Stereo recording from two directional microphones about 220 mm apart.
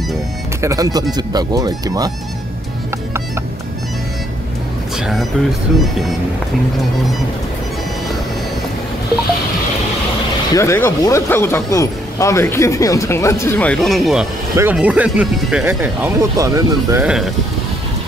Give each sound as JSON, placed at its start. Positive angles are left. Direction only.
{"t": 0.6, "sound": "speech", "side_deg": -15}
{"t": 4.9, "sound": "speech", "side_deg": 0}
{"t": 10.5, "sound": "speech", "side_deg": 10}
{"t": 17.0, "sound": "speech", "side_deg": -5}